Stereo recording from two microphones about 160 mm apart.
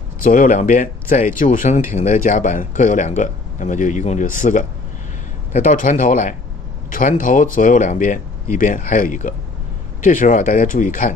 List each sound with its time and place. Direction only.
0.2 s speech: 55° left (ahead or behind)